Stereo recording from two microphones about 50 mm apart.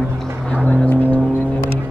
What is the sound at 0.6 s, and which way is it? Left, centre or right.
Vehicle, left.